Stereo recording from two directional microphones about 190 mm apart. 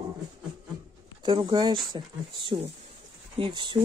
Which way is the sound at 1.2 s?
25° right (ahead or behind).